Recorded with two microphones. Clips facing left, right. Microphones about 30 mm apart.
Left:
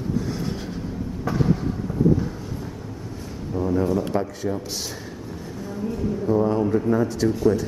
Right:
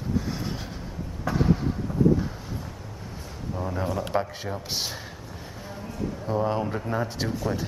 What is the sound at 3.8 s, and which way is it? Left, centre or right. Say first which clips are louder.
Speech: left 1 dB; centre.